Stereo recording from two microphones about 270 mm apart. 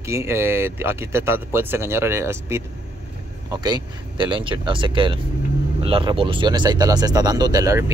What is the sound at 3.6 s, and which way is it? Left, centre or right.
Speech, centre.